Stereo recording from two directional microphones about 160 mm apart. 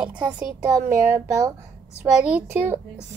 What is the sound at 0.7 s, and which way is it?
Speech, 20° right (ahead or behind).